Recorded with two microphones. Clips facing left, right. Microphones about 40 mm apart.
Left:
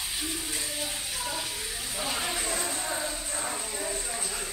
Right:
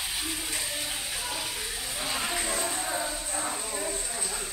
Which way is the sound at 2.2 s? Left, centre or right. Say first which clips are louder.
Right 1 dB; centre.